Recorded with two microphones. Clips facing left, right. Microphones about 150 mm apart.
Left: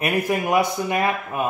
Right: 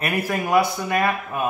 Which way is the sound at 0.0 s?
15° left (ahead or behind).